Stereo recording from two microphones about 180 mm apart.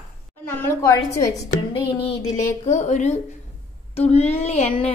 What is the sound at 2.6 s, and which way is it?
A woman's voice, 40° left (ahead or behind).